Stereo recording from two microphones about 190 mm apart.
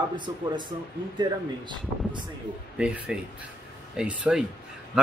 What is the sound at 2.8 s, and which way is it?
Speech, 5° right (ahead or behind).